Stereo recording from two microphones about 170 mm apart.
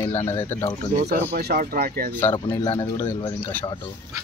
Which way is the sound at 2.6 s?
30° left (ahead or behind).